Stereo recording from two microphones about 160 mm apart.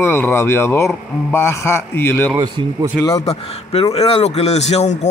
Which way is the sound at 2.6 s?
30° right (ahead or behind).